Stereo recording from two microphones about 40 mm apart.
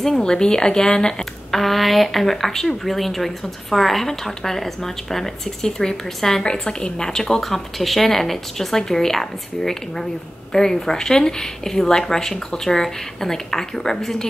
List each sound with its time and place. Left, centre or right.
0.0 s speech: centre
1.5 s speech: centre